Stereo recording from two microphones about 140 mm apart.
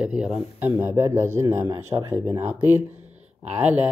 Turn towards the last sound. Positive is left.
turn(degrees=-10)  # may be behind; listen again after turning